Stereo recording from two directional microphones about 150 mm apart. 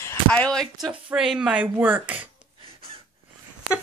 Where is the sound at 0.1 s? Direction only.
10° left (ahead or behind); by 2.1 s 10° right (ahead or behind).